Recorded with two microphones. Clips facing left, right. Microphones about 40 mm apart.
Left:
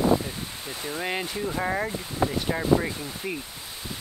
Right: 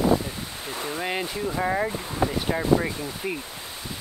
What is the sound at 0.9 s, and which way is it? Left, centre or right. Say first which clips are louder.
Speech: even; centre.